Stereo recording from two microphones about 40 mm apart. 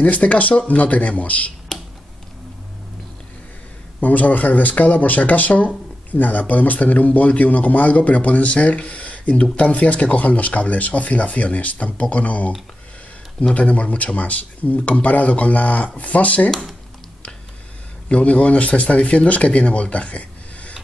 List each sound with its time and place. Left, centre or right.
0.0 s speech: left
1.7 s a sound: centre
4.0 s speech: left
13.6 s speech: left
18.0 s speech: left